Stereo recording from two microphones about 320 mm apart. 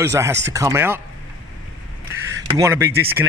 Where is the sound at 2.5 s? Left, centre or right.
Centre.